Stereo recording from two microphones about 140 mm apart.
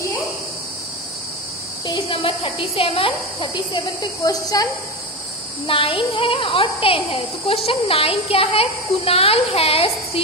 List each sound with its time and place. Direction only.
1.9 s speech: 35° left (ahead or behind)
5.7 s a woman's voice: 40° left (ahead or behind)